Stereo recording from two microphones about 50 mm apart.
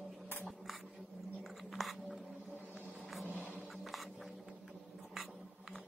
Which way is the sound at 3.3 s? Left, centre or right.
Right.